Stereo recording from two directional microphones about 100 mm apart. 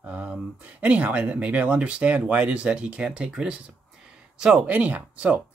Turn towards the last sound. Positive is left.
turn(degrees=-15)  # may be behind; listen again after turning